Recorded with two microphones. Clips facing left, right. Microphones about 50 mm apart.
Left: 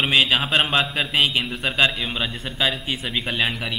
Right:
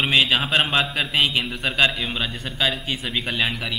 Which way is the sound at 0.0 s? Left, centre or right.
Centre.